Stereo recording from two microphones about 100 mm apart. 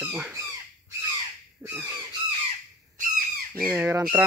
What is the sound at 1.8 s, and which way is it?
Speech, 30° right (ahead or behind).